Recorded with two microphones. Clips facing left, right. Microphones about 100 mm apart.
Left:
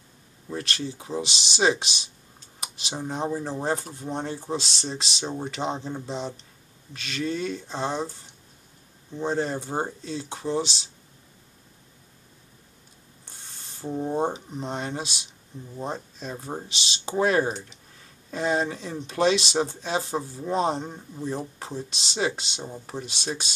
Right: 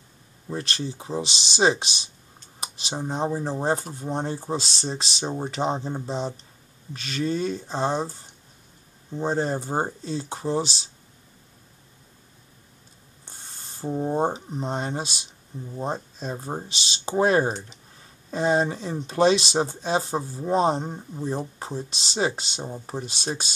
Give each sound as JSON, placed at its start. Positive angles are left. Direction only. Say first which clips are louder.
{"t": 0.5, "sound": "speech", "louder": "right 1 dB", "side_deg": -30}
{"t": 13.8, "sound": "speech", "louder": "right 2 dB", "side_deg": -20}
{"t": 14.1, "sound": "speech", "louder": "right 2 dB", "side_deg": -35}